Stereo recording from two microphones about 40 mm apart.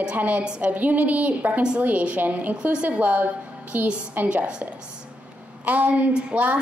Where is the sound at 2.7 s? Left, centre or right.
Right.